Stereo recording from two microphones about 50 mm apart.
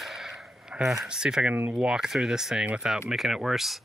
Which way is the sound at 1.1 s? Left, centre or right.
Centre.